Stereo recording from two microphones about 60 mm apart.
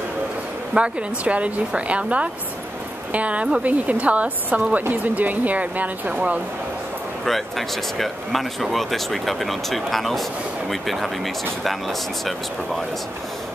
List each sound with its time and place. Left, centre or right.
0.7 s speech: centre
7.2 s speech: centre